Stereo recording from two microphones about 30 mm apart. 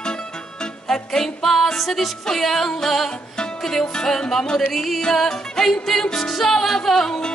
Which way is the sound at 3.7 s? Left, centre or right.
Centre.